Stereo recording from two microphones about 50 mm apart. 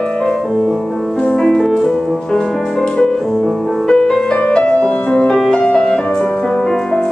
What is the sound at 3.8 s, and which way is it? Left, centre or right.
Music, centre.